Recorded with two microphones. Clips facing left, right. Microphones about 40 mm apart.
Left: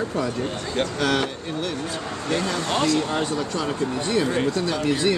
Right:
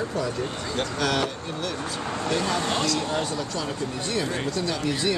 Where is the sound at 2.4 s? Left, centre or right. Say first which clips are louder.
Even; centre.